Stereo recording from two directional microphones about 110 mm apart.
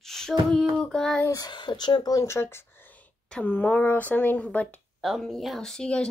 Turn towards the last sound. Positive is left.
turn(degrees=5)  # may be behind; listen again after turning